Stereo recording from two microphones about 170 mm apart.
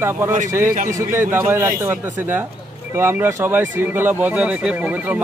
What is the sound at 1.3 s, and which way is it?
Speech, 15° right (ahead or behind).